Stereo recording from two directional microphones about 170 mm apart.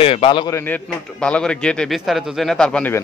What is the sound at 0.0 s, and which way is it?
Speech, 35° left (ahead or behind).